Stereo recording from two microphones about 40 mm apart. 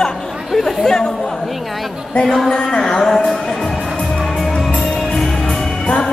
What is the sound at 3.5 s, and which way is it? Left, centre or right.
Music, centre.